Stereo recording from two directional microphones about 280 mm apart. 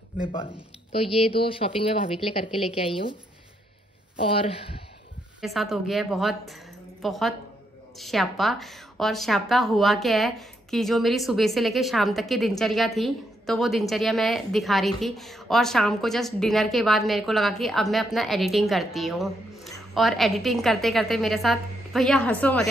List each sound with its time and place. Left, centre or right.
0.9 s speech: left
4.2 s speech: centre
5.4 s a woman's voice: centre